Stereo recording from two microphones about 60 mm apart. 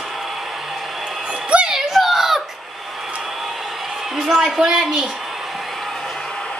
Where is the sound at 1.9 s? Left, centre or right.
Centre.